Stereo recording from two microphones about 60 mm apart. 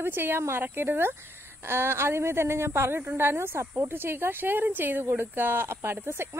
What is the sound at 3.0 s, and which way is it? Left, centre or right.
Speech, right.